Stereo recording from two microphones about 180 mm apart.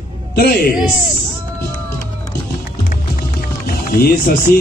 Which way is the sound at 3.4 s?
55° left (ahead or behind).